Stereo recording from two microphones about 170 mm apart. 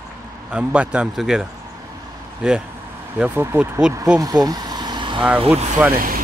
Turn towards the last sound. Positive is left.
turn(degrees=-55)  # may be behind; listen again after turning